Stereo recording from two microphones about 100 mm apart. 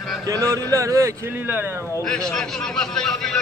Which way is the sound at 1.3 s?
20° right (ahead or behind).